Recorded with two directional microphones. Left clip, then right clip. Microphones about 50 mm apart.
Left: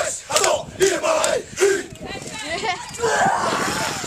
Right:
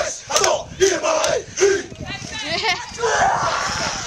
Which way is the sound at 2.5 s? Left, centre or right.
Right.